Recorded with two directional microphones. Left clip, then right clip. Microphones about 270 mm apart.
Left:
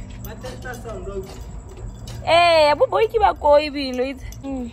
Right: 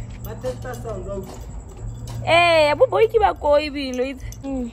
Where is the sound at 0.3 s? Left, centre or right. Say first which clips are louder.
Right 4 dB; right.